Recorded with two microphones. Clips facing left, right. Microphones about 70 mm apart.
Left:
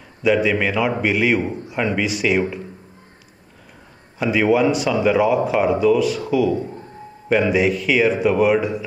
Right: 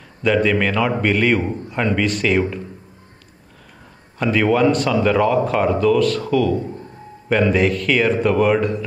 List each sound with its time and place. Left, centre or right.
0.2 s a man's voice: centre
4.2 s a man's voice: centre